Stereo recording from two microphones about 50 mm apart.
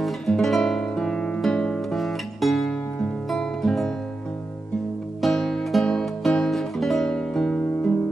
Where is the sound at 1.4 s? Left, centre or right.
Centre.